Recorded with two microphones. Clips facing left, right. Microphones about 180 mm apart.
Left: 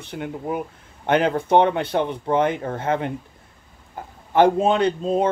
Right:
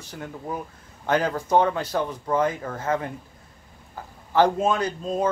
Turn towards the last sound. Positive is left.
turn(degrees=30)  # may be behind; listen again after turning